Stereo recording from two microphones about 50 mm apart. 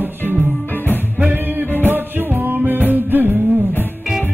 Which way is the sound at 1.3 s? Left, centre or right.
Right.